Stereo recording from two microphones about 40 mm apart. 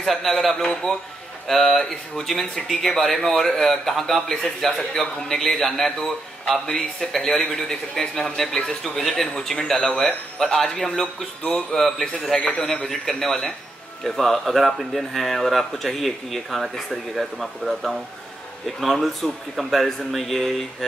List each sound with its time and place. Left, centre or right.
0.1 s a man's voice: centre
12.4 s a man's voice: left
12.8 s a man's voice: centre